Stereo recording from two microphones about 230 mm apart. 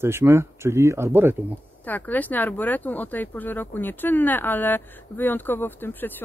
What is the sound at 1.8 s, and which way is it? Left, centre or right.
Speech, centre.